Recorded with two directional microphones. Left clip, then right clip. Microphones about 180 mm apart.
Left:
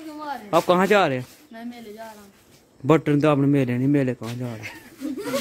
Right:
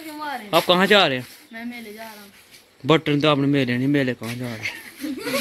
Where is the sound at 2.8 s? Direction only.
15° left (ahead or behind).